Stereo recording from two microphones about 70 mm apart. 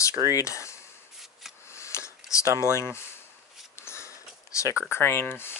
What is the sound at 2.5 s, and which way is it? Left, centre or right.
Speech, right.